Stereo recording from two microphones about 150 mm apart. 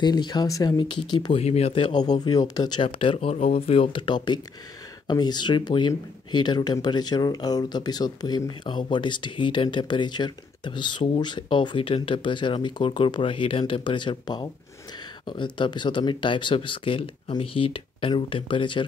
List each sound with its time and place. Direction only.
0.0 s speech: 30° left (ahead or behind)
1.4 s speech: 45° left (ahead or behind)